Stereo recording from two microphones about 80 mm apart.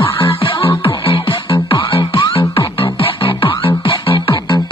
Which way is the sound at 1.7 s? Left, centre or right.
Left.